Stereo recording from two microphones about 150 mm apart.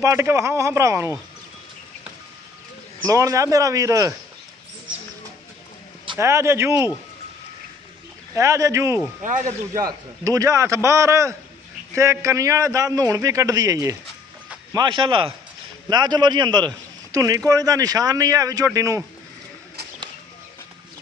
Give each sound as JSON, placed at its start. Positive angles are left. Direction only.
{"t": 0.0, "sound": "speech", "side_deg": -15}
{"t": 3.1, "sound": "a man's voice", "side_deg": -20}
{"t": 6.1, "sound": "a man's voice", "side_deg": -20}
{"t": 8.4, "sound": "a man's voice", "side_deg": -20}
{"t": 9.2, "sound": "speech", "side_deg": -55}
{"t": 9.8, "sound": "a man's voice", "side_deg": -25}